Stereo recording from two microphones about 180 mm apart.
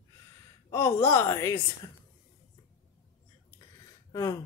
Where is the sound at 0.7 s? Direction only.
15° left (ahead or behind).